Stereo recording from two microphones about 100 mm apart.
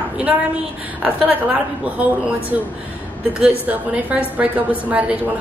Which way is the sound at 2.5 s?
10° right (ahead or behind).